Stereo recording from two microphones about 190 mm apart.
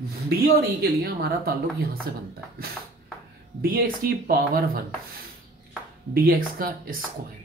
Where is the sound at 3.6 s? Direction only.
50° right (ahead or behind).